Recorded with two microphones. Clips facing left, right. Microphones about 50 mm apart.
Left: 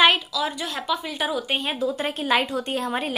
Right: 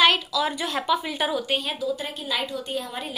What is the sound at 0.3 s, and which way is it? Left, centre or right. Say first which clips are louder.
Speech: right 2 dB; centre.